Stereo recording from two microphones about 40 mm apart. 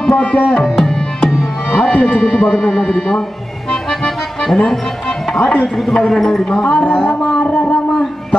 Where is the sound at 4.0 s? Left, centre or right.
Centre.